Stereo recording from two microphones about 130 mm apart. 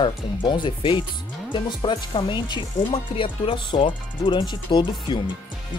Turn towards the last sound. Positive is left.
turn(degrees=40)  # may be behind; listen again after turning